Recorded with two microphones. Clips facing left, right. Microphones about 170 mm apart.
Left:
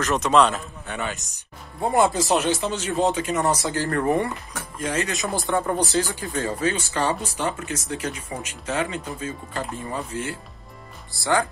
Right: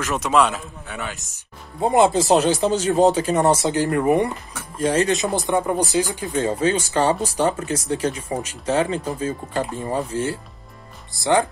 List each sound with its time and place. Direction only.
0.0 s speech: 10° right (ahead or behind)
1.8 s speech: 20° right (ahead or behind)
2.2 s speech: 35° right (ahead or behind); by 4.3 s 15° right (ahead or behind)
4.7 s speech: 30° right (ahead or behind)
5.2 s speech: 20° right (ahead or behind)
6.9 s speech: 35° right (ahead or behind)
11.1 s speech: 20° right (ahead or behind)